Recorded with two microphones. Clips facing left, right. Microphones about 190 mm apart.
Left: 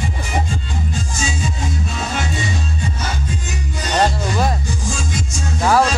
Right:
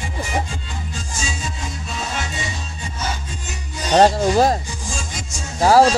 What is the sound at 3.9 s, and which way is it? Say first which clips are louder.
Music: right 5 dB; 40° right (ahead or behind).